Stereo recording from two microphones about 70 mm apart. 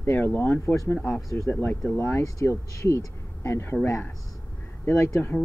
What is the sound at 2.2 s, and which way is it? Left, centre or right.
Speech, left.